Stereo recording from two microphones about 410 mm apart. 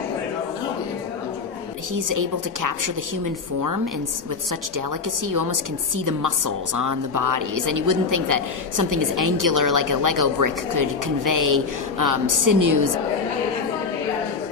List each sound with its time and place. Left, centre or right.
2.0 s a woman's voice: right
5.3 s a woman's voice: right